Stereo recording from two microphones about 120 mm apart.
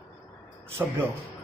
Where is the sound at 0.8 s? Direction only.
20° right (ahead or behind).